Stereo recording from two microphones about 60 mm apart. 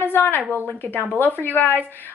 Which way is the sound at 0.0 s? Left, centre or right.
Left.